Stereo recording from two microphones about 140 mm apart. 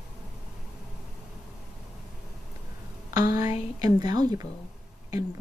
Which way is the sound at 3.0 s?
25° right (ahead or behind).